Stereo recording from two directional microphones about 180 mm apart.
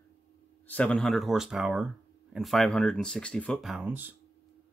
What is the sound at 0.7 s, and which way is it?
Speech, 5° left (ahead or behind).